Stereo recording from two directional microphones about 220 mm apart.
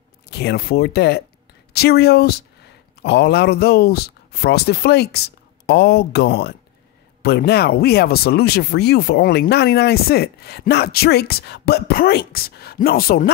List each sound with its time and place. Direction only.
0.3 s speech: 50° left (ahead or behind)